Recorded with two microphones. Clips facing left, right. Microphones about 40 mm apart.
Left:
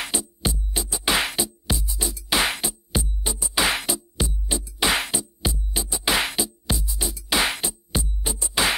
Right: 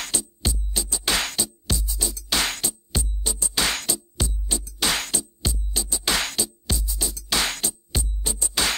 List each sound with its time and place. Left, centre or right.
0.0 s music: centre